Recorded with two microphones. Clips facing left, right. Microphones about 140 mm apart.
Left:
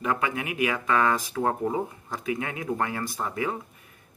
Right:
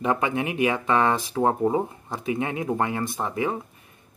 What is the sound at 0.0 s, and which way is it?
A man's voice, 25° right (ahead or behind).